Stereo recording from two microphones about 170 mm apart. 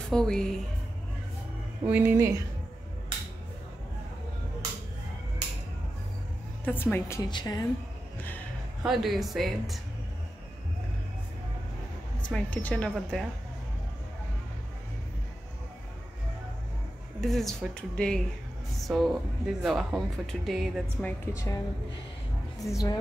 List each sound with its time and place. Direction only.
0.1 s speech: 5° left (ahead or behind)
1.9 s speech: 10° right (ahead or behind)
6.6 s a woman's voice: 10° left (ahead or behind)
8.8 s speech: centre (ahead or behind)
12.3 s speech: 5° left (ahead or behind)
17.2 s speech: centre (ahead or behind)
21.0 s a woman's voice: 20° left (ahead or behind)
22.7 s a woman's voice: 20° left (ahead or behind)